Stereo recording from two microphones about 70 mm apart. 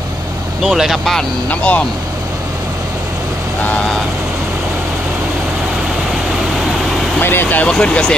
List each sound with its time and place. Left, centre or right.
0.6 s speech: centre
1.5 s speech: centre
7.2 s speech: left
7.6 s speech: centre